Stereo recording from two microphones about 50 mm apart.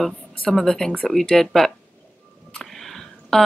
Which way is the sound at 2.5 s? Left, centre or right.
Centre.